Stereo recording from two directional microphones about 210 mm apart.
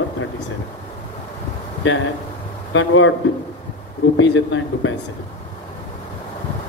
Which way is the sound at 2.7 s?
65° left (ahead or behind).